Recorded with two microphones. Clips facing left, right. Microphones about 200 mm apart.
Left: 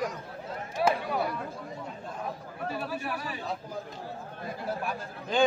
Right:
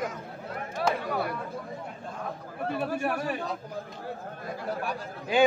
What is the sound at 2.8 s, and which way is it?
Speech, 50° right (ahead or behind).